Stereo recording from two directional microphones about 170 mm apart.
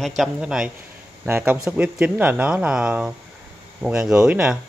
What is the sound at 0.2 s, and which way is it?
Speech, 5° right (ahead or behind).